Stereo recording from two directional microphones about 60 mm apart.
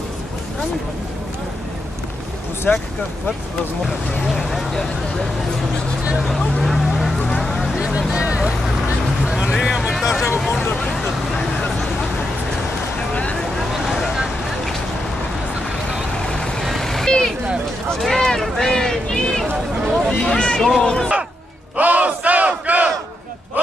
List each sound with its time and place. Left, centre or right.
2.7 s speech: left
3.8 s speech: centre
6.1 s speech: centre
7.4 s vehicle: centre
8.1 s vehicle: centre
10.8 s vehicle: centre
13.1 s vehicle: centre
13.8 s vehicle: centre
15.9 s vehicle: centre
18.0 s speech: centre
21.7 s battle cry: right